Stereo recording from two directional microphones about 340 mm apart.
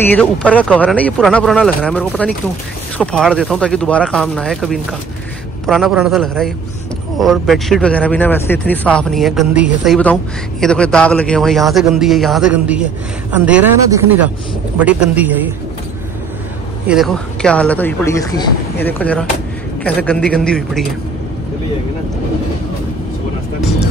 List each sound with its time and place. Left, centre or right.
0.1 s speech: centre
16.8 s speech: centre